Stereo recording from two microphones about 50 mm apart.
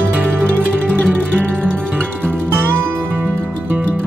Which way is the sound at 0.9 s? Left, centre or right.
Left.